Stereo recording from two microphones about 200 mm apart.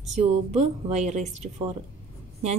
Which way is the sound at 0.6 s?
35° right (ahead or behind).